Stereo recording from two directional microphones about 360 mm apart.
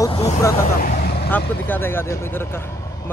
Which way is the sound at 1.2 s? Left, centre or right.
Centre.